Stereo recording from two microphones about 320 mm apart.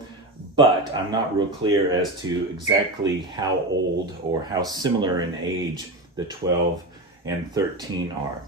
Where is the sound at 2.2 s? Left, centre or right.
Centre.